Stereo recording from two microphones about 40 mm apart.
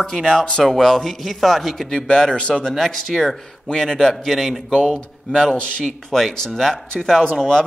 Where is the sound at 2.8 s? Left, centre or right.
Centre.